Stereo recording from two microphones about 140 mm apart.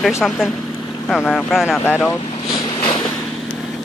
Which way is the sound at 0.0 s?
Centre (ahead or behind).